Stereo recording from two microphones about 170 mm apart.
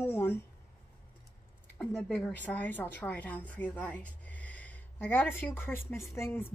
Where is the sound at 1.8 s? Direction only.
5° left (ahead or behind).